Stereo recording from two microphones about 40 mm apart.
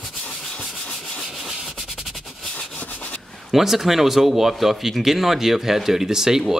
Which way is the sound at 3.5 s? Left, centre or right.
Centre.